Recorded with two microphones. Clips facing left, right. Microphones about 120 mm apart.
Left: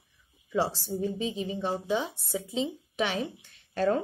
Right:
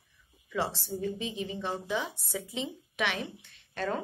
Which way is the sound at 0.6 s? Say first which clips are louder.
Left 4 dB; 35° left (ahead or behind).